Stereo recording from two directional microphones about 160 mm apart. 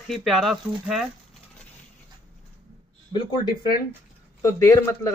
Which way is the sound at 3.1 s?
30° left (ahead or behind).